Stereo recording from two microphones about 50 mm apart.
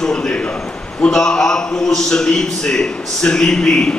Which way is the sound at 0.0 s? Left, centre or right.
Centre.